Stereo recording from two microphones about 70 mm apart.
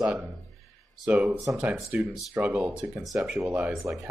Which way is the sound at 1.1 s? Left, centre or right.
Right.